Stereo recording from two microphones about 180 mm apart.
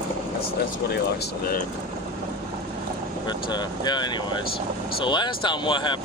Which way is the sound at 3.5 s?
25° left (ahead or behind).